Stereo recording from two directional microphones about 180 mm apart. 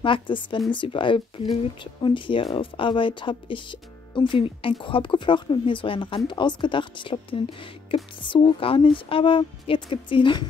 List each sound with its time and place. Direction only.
0.0 s speech: 25° left (ahead or behind)